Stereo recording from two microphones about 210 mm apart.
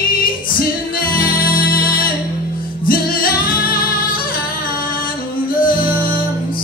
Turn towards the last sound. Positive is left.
turn(degrees=45)  # may be behind; listen again after turning